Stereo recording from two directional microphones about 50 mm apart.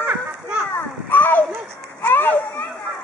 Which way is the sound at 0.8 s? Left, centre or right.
Left.